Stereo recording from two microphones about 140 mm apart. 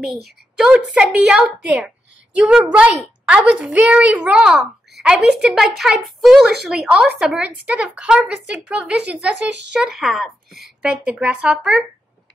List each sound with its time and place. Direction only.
0.0 s a woman's voice: centre (ahead or behind)